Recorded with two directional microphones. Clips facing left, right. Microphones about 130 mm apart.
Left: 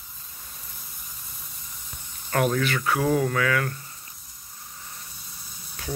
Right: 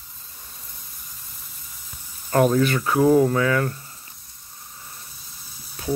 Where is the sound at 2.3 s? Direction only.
25° right (ahead or behind).